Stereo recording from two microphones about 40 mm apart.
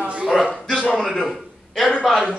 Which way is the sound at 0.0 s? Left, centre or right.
Right.